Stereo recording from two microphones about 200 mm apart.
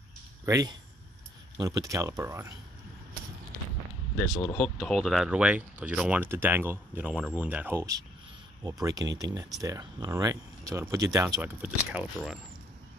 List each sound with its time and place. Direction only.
0.5 s speech: 15° right (ahead or behind)
4.6 s speech: centre (ahead or behind)